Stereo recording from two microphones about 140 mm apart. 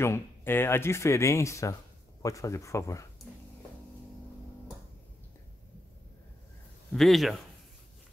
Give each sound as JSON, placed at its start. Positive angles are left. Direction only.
{"t": 0.0, "sound": "speech", "side_deg": 15}
{"t": 6.9, "sound": "speech", "side_deg": 0}